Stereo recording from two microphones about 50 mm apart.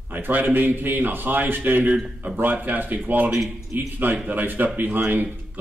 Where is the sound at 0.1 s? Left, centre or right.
Right.